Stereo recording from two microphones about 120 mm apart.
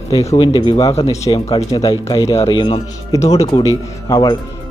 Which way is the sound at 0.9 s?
55° left (ahead or behind).